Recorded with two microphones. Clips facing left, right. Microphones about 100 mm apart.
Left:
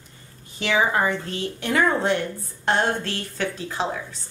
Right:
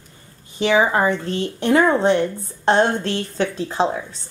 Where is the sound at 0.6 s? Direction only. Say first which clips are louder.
Right 5 dB; 25° right (ahead or behind).